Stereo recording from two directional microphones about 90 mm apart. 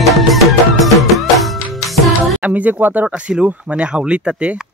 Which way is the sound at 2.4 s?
15° right (ahead or behind).